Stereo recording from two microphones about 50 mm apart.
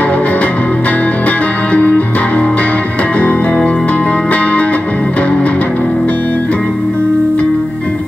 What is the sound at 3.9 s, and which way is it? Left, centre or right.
Music, left.